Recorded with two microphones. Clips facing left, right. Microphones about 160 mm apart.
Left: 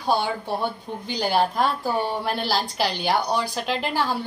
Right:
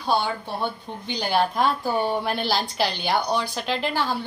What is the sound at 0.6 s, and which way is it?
Speech, 5° left (ahead or behind).